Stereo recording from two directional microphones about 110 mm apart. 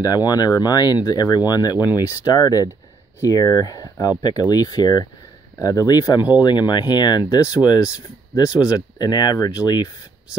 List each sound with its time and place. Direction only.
0.0 s speech: 35° left (ahead or behind)